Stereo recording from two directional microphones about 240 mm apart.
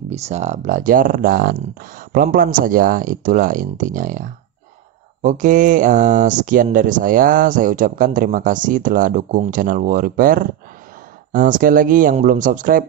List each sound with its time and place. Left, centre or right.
0.1 s speech: right